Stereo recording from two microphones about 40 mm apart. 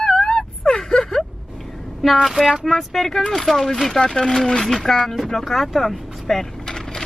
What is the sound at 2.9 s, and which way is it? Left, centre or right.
Speech, centre.